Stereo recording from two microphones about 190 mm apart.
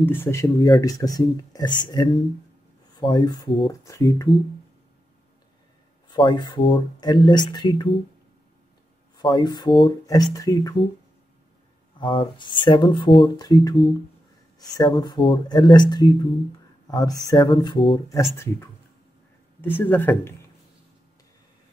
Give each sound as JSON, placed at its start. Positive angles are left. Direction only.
{"t": 0.0, "sound": "speech", "side_deg": 10}
{"t": 6.0, "sound": "speech", "side_deg": 25}
{"t": 9.1, "sound": "speech", "side_deg": 25}
{"t": 12.0, "sound": "speech", "side_deg": 25}
{"t": 18.3, "sound": "speech", "side_deg": 15}